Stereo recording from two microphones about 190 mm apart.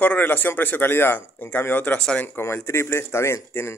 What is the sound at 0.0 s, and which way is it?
Speech, 10° left (ahead or behind).